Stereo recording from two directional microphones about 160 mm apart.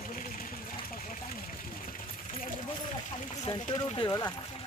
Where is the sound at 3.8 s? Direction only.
30° left (ahead or behind).